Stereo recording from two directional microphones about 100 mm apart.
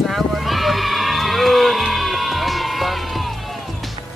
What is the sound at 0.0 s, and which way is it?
Horse, centre (ahead or behind).